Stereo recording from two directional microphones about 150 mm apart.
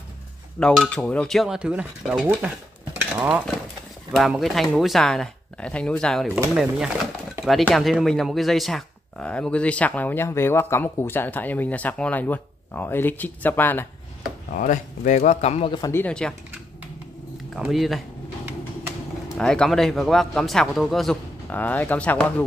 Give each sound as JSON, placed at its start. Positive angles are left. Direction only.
{"t": 0.6, "sound": "a man's voice", "side_deg": 5}
{"t": 3.0, "sound": "stir", "side_deg": -10}
{"t": 4.1, "sound": "a man's voice", "side_deg": 0}
{"t": 7.6, "sound": "speech", "side_deg": 0}
{"t": 14.5, "sound": "speech", "side_deg": 60}
{"t": 15.9, "sound": "speech", "side_deg": 10}
{"t": 17.6, "sound": "a man's voice", "side_deg": 0}
{"t": 19.2, "sound": "a man's voice", "side_deg": 5}